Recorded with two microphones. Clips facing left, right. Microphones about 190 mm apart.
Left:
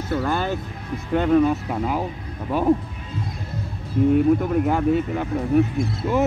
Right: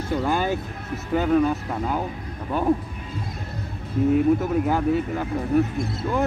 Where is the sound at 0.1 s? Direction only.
10° right (ahead or behind); by 2.0 s 5° left (ahead or behind).